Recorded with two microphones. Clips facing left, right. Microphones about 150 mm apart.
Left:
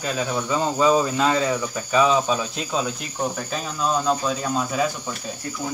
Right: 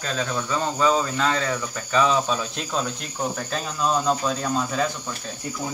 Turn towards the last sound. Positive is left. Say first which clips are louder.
# left 1 dB
turn(degrees=5)  # may be behind; listen again after turning